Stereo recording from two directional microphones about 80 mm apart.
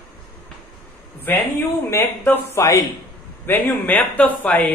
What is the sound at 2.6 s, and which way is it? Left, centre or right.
Speech, left.